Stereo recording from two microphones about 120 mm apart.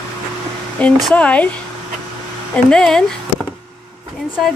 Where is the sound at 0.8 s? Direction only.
10° left (ahead or behind).